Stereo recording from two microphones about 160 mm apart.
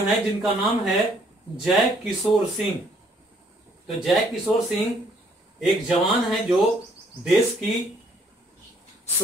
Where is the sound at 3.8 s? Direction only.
Centre (ahead or behind).